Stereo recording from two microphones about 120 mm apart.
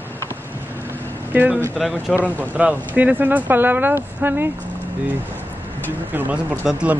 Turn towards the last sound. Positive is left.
turn(degrees=-10)  # may be behind; listen again after turning